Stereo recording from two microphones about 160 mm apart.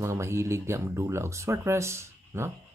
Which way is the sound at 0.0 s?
20° right (ahead or behind).